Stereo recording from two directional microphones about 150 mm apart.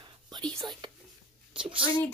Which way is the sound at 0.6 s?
30° right (ahead or behind).